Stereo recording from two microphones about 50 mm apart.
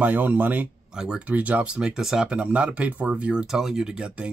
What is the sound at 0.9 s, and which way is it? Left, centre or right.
Speech, centre.